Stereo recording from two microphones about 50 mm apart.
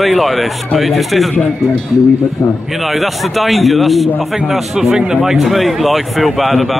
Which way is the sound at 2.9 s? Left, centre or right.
Centre.